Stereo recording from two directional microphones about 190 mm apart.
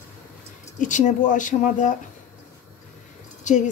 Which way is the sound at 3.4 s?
40° left (ahead or behind).